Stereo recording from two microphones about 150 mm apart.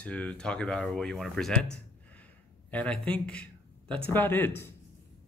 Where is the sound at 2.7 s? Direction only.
5° left (ahead or behind).